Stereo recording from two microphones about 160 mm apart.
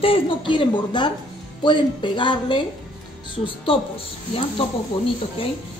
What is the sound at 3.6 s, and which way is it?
A woman's voice, 35° left (ahead or behind).